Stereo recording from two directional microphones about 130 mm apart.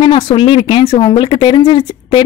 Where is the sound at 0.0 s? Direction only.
40° left (ahead or behind).